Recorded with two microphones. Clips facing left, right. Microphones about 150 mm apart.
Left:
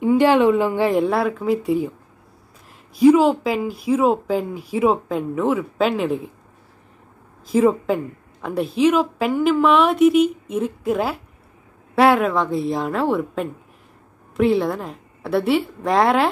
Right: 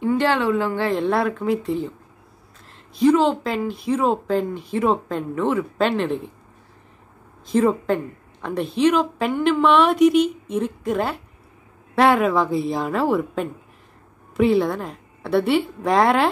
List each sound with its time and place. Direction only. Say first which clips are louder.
0.0 s a woman's voice: left 5 dB; 10° left (ahead or behind)
3.0 s a woman's voice: left 3 dB; 10° left (ahead or behind)
7.5 s a woman's voice: left 2 dB; 5° left (ahead or behind)